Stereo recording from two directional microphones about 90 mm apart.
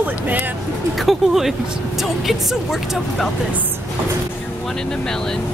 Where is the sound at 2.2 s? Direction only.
Centre (ahead or behind).